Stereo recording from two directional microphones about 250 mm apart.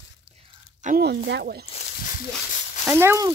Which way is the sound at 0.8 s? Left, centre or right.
Right.